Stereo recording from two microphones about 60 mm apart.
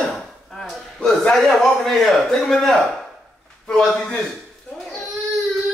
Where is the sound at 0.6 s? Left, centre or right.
Centre.